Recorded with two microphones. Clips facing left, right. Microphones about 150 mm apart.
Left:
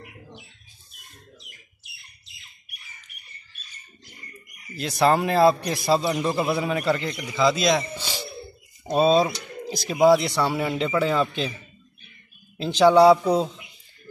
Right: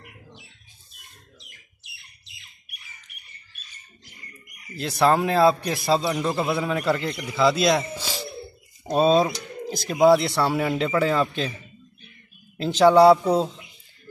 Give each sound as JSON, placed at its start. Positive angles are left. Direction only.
{"t": 4.9, "sound": "speech", "side_deg": 0}
{"t": 12.5, "sound": "speech", "side_deg": 0}